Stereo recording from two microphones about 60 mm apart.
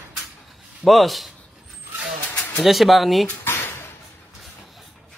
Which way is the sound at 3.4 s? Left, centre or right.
Left.